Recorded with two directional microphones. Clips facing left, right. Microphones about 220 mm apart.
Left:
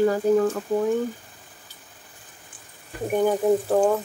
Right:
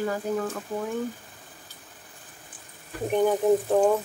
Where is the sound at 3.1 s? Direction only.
10° left (ahead or behind).